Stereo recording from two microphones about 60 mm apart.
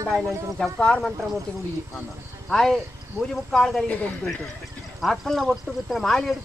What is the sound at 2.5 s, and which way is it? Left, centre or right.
Speech, centre.